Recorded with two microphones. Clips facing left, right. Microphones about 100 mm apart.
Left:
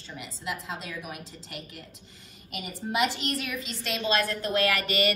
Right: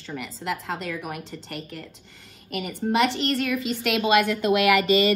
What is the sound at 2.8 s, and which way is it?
Speech, 55° right (ahead or behind).